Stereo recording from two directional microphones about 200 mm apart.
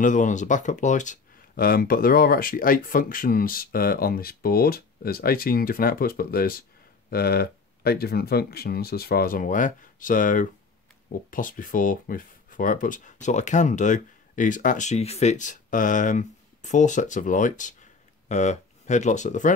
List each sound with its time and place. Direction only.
0.0 s speech: 40° left (ahead or behind)